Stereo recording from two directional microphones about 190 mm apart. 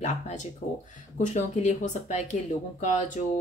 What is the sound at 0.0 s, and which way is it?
Speech, 40° left (ahead or behind).